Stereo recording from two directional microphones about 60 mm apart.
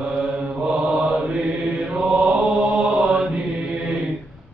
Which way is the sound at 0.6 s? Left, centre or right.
Centre.